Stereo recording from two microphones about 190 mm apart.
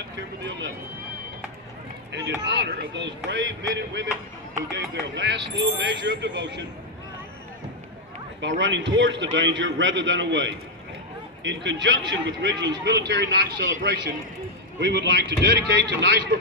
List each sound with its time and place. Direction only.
0.5 s a man's voice: 70° right (ahead or behind)
2.1 s a man's voice: 65° right (ahead or behind)
8.4 s a man's voice: 75° right (ahead or behind)
14.8 s speech: 65° right (ahead or behind)